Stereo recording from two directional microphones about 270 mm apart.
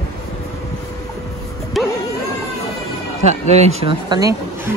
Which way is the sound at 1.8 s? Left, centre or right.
Centre.